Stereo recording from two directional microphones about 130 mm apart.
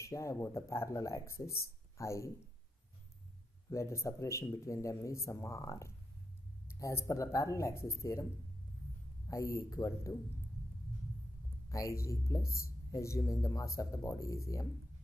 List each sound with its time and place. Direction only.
0.0 s speech: 25° left (ahead or behind)
3.7 s speech: 20° left (ahead or behind)
9.3 s speech: 20° left (ahead or behind)
11.7 s speech: 25° left (ahead or behind)